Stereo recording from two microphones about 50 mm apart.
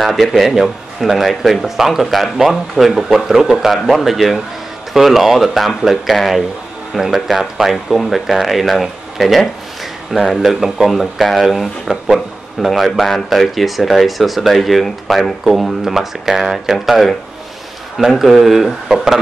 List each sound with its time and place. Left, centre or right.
0.0 s speech: centre